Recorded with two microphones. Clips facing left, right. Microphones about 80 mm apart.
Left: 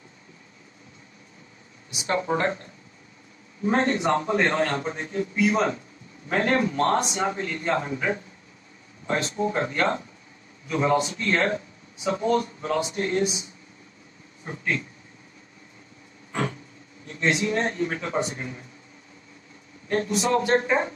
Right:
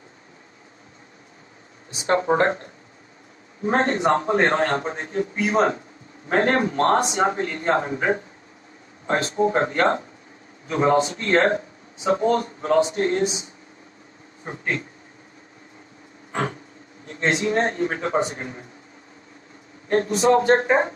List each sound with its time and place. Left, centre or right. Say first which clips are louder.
1.9 s speech: right 5 dB; right
16.3 s a sound: right 2 dB; right
17.0 s speech: right 2 dB; right
19.9 s speech: right 5 dB; right